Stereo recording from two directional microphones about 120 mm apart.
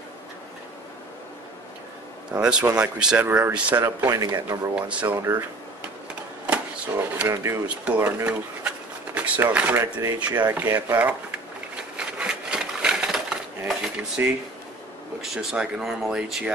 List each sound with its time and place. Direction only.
2.3 s speech: 10° right (ahead or behind)
3.8 s speech: 25° right (ahead or behind)
4.7 s speech: 10° right (ahead or behind)
6.4 s vehicle: 10° right (ahead or behind)
7.6 s speech: 10° right (ahead or behind)
12.0 s a sound: 10° right (ahead or behind)
15.2 s speech: 5° right (ahead or behind)